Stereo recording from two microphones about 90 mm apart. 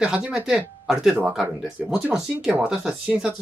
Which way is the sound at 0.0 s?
10° right (ahead or behind).